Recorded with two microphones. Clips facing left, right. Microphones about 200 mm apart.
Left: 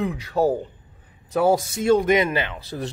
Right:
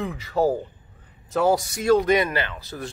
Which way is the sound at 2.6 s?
30° left (ahead or behind).